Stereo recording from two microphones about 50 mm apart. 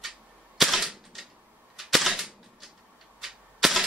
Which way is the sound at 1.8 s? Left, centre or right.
Centre.